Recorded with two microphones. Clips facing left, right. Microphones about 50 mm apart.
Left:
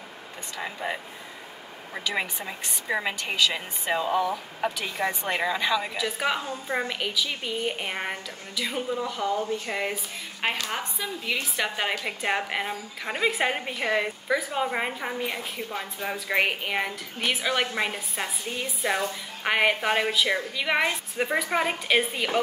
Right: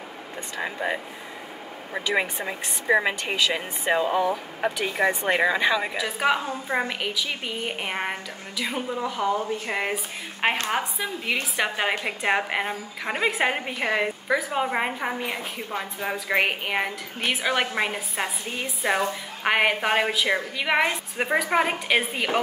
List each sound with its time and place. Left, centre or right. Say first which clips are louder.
0.6 s a woman's voice: right 4 dB; centre
3.3 s speech: right 1 dB; right
5.9 s a woman's voice: right 4 dB; centre
11.5 s a woman's voice: right 3 dB; centre